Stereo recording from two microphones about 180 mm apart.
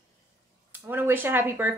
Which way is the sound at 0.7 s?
10° right (ahead or behind).